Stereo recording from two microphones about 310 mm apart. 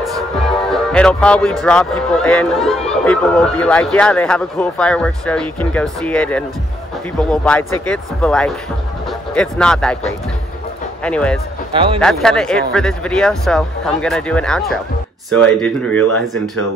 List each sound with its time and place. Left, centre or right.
0.7 s speech: centre
11.1 s speech: centre
11.7 s a man's voice: centre
12.0 s speech: centre